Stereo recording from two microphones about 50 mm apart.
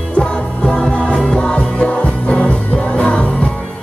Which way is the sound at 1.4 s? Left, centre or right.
Left.